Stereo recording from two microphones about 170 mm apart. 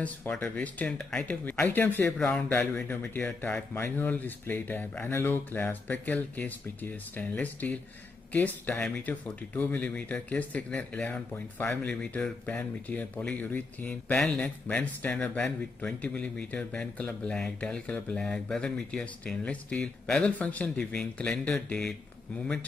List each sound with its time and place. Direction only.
0.0 s speech: 10° left (ahead or behind)